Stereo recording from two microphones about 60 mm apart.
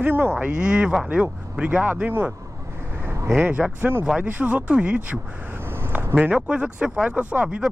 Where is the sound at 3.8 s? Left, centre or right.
Right.